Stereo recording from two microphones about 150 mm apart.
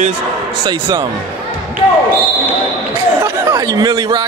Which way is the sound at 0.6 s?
30° right (ahead or behind).